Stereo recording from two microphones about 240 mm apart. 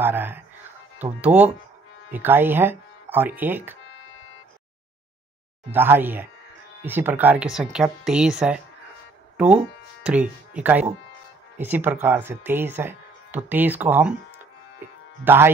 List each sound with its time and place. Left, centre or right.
0.0 s speech: centre
5.7 s speech: centre
10.0 s speech: centre
15.2 s speech: centre